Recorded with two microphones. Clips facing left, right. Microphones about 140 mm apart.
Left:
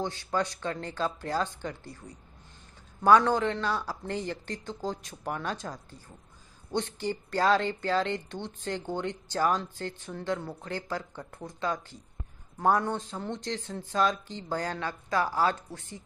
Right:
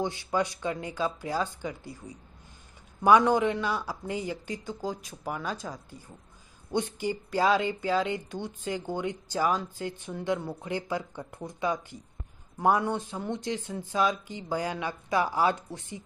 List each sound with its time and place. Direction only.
0.0 s speech: 15° right (ahead or behind)